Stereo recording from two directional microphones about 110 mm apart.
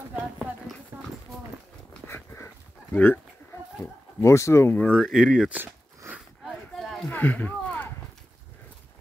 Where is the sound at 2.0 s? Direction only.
20° left (ahead or behind).